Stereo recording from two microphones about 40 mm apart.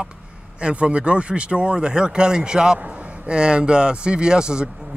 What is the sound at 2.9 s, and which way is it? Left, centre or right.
Speech, right.